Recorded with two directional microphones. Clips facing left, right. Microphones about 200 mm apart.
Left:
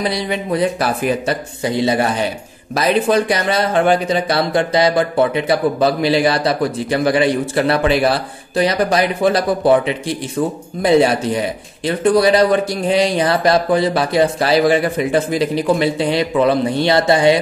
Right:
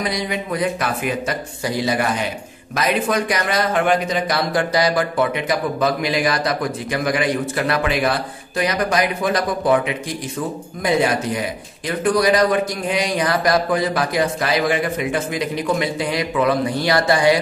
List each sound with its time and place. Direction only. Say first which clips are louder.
0.0 s a man's voice: left 3 dB; 30° left (ahead or behind)